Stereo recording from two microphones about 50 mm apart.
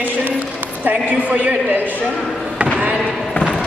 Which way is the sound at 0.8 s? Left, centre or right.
Right.